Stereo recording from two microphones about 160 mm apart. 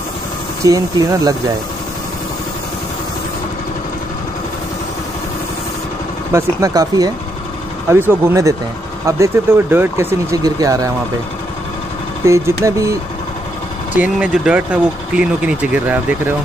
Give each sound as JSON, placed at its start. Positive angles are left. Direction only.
{"t": 0.7, "sound": "speech", "side_deg": -20}
{"t": 6.3, "sound": "speech", "side_deg": -20}
{"t": 12.2, "sound": "speech", "side_deg": -15}
{"t": 13.9, "sound": "speech", "side_deg": -10}